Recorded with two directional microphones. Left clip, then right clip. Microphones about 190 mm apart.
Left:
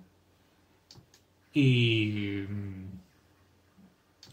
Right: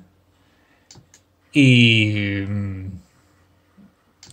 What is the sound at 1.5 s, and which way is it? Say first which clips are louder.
Speech: right 12 dB; 45° right (ahead or behind).